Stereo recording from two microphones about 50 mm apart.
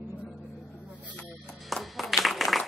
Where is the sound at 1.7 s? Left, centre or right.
Centre.